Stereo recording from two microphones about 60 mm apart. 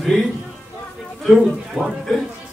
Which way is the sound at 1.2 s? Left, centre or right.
Centre.